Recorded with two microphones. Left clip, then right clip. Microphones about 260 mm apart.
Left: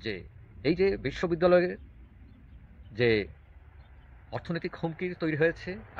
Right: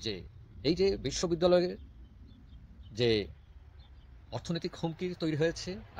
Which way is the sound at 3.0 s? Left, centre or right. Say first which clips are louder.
Left 3 dB; right.